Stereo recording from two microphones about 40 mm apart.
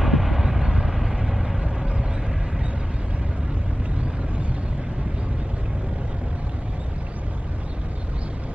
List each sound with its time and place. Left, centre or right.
0.0 s vehicle: centre
1.6 s vehicle: right